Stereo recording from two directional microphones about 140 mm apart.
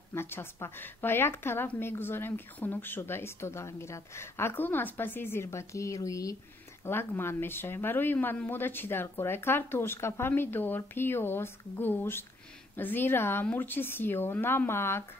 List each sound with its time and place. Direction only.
0.1 s speech: 15° left (ahead or behind)